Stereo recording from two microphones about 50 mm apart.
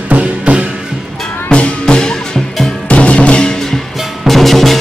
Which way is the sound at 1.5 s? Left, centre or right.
Centre.